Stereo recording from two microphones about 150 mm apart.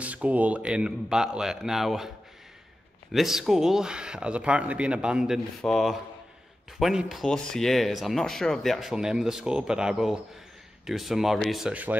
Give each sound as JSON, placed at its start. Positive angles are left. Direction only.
{"t": 0.0, "sound": "speech", "side_deg": -10}